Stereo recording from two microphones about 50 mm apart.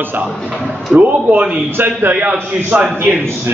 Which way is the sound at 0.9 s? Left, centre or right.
Centre.